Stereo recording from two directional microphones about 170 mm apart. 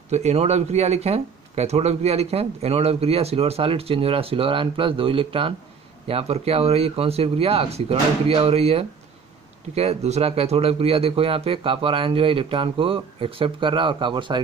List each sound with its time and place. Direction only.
0.1 s speech: 40° right (ahead or behind)